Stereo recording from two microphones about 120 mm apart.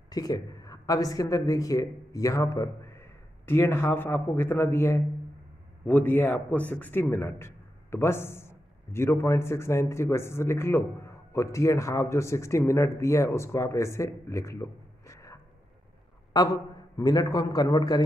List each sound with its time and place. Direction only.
0.1 s a man's voice: 35° left (ahead or behind)
16.3 s a man's voice: 35° left (ahead or behind)